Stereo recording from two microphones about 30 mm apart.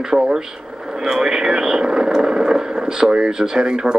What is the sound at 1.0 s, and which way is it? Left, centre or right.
Speech, centre.